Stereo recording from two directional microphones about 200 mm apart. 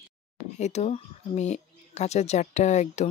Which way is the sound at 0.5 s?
35° left (ahead or behind).